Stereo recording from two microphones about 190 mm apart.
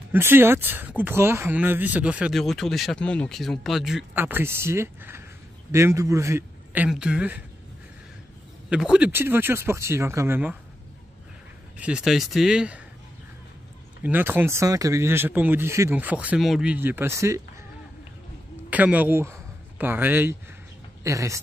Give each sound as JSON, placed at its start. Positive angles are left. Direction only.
{"t": 0.1, "sound": "speech", "side_deg": -10}
{"t": 8.6, "sound": "speech", "side_deg": -5}
{"t": 11.8, "sound": "speech", "side_deg": -5}
{"t": 14.0, "sound": "speech", "side_deg": -10}
{"t": 18.7, "sound": "speech", "side_deg": -10}